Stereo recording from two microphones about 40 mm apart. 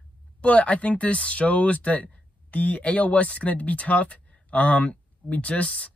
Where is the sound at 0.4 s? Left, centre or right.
Left.